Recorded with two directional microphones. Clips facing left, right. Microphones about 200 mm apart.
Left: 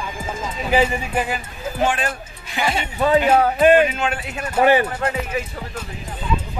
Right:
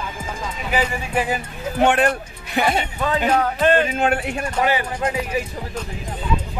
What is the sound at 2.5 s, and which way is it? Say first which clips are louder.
Speech: right 3 dB; 50° right (ahead or behind).